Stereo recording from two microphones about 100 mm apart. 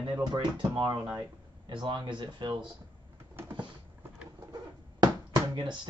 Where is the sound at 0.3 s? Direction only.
50° right (ahead or behind).